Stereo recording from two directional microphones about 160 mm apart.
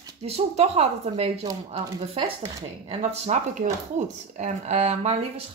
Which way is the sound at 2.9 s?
45° right (ahead or behind).